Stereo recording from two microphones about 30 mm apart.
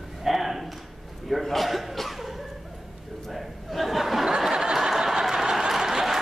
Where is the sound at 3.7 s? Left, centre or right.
Centre.